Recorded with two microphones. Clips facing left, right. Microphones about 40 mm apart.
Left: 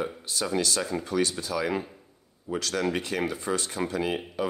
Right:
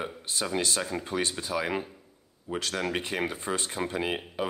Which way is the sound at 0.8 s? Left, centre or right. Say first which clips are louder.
Left 2 dB; centre.